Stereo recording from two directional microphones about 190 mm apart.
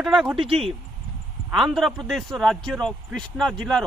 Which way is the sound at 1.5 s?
Centre (ahead or behind).